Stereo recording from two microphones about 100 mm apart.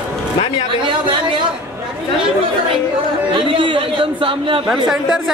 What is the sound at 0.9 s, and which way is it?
Speech, 55° right (ahead or behind).